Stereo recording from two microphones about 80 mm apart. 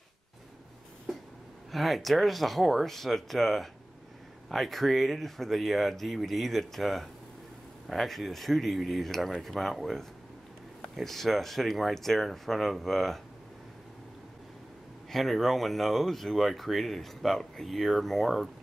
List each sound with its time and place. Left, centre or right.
1.7 s speech: centre
15.0 s speech: centre